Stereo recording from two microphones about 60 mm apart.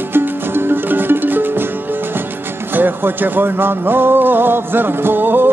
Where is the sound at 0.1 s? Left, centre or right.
Right.